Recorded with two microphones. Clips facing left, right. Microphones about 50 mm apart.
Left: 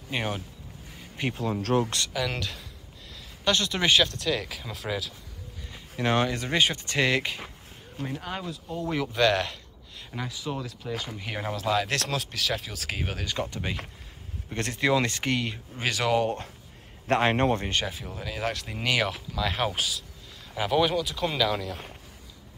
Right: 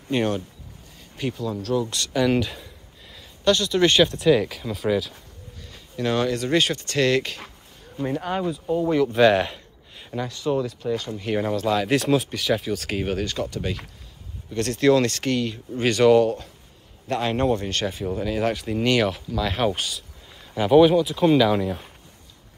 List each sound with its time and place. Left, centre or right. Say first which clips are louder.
0.1 s speech: right 8 dB; centre
1.3 s speech: even; left
2.1 s a sound: right 13 dB; centre
3.5 s speech: right 5 dB; left
4.3 s speech: right 10 dB; centre
6.2 s speech: right 4 dB; centre
8.0 s speech: right 9 dB; centre
9.1 s a sound: right 4 dB; centre
10.1 s speech: right 9 dB; centre
13.4 s speech: right 4 dB; centre
15.8 s speech: right 9 dB; centre
17.1 s speech: right 1 dB; left
17.8 s speech: right 9 dB; centre